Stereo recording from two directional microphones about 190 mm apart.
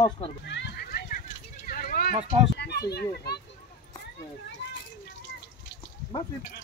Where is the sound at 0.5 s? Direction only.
60° left (ahead or behind).